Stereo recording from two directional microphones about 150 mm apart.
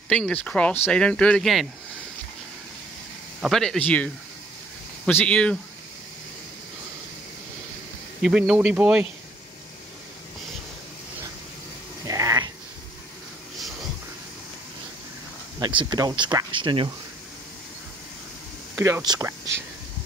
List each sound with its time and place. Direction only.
0.1 s speech: 10° left (ahead or behind)
3.3 s speech: centre (ahead or behind)
8.2 s speech: 5° right (ahead or behind)
12.1 s a sound: 20° right (ahead or behind)
15.6 s speech: 30° right (ahead or behind)
18.8 s speech: 15° right (ahead or behind)